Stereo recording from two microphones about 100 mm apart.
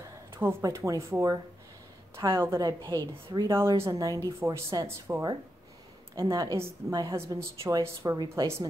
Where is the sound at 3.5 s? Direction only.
25° right (ahead or behind).